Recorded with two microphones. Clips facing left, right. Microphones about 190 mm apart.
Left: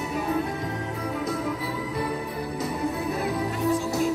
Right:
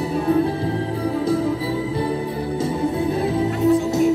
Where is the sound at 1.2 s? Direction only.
30° right (ahead or behind).